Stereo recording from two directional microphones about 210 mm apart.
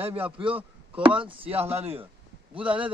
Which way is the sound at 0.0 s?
25° right (ahead or behind).